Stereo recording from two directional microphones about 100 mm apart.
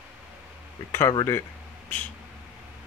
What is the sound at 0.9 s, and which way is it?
Speech, 25° left (ahead or behind).